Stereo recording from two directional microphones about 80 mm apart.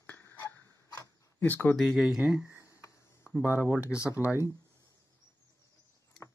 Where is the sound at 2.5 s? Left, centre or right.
Left.